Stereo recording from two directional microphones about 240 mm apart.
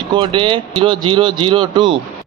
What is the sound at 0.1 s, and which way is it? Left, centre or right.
A man's voice, right.